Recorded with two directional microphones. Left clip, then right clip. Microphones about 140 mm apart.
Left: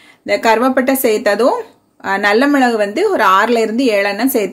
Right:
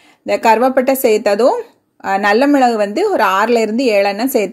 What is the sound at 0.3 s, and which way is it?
A woman's voice, 40° right (ahead or behind).